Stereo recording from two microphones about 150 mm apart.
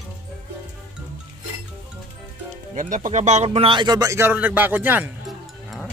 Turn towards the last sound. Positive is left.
turn(degrees=-10)  # may be behind; listen again after turning